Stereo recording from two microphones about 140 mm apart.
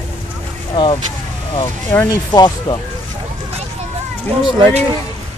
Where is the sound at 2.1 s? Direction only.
30° left (ahead or behind).